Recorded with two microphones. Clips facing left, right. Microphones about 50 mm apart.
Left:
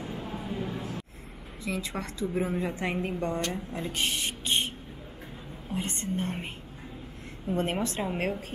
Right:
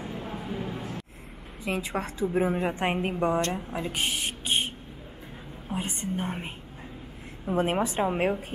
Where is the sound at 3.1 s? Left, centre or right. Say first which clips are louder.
Right 5 dB; right.